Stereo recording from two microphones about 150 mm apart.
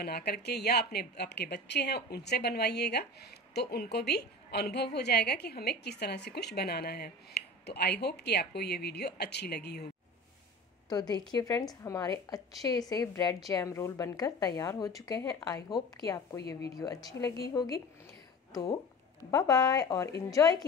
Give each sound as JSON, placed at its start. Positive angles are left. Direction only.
{"t": 0.0, "sound": "speech", "side_deg": 90}
{"t": 10.9, "sound": "a woman's voice", "side_deg": 25}